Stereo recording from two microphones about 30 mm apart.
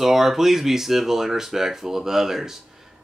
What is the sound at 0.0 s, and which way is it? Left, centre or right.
Speech, centre.